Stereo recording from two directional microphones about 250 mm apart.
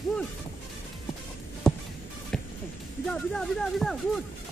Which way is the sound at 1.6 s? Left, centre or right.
Centre.